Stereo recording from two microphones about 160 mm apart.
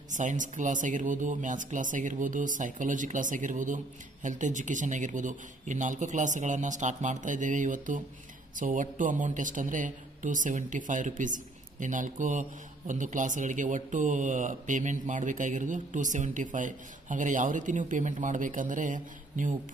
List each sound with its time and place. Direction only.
0.1 s a man's voice: 50° right (ahead or behind)